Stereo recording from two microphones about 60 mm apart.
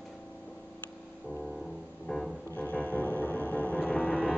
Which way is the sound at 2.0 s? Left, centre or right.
Centre.